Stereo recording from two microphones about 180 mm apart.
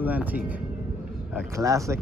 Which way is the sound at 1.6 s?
15° right (ahead or behind).